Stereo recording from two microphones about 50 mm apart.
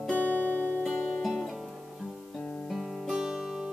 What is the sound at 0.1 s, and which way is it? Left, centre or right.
Music, left.